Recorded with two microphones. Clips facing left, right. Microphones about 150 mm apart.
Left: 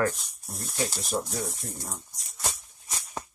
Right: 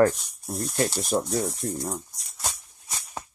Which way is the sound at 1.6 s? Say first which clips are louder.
Right 10 dB; 60° right (ahead or behind).